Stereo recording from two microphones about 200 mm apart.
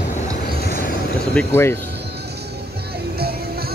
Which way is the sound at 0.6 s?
45° left (ahead or behind).